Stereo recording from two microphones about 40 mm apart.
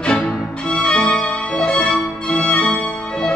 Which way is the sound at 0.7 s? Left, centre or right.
Left.